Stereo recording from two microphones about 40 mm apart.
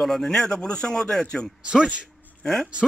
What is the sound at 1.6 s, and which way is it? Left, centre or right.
Speech, right.